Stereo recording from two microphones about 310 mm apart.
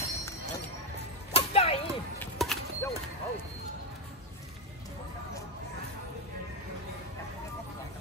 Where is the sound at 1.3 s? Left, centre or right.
Centre.